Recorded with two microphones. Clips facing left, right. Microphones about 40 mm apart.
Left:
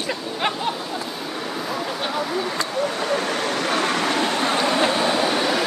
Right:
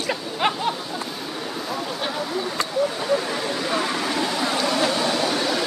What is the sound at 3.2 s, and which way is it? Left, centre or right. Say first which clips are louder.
Speech: left 3 dB; left.